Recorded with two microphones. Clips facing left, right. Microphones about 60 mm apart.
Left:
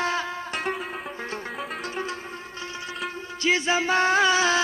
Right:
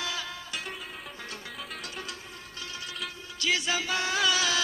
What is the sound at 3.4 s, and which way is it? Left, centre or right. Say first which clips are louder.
Music: left 6 dB; left.